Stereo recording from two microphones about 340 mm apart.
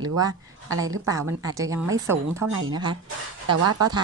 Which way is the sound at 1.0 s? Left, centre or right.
Centre.